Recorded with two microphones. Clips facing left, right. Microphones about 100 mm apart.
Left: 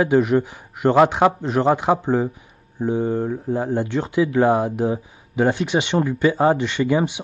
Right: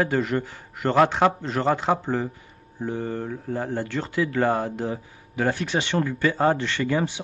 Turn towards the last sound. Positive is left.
turn(degrees=15)  # may be behind; listen again after turning